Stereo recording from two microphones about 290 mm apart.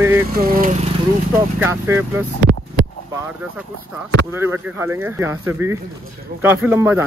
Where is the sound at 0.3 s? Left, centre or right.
Right.